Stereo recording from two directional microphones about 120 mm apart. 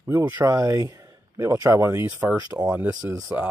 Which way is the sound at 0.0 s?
20° right (ahead or behind).